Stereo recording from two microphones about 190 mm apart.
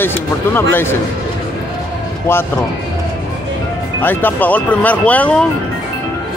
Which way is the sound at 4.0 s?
10° left (ahead or behind).